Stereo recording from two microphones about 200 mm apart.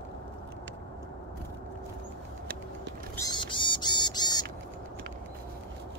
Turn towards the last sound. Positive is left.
turn(degrees=20)  # may be behind; listen again after turning